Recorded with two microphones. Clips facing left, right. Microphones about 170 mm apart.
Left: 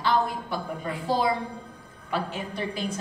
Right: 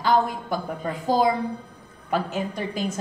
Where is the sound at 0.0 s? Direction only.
45° right (ahead or behind).